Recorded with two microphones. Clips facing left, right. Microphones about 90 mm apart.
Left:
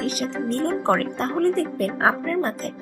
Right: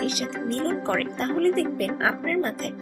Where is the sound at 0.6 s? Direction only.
35° left (ahead or behind).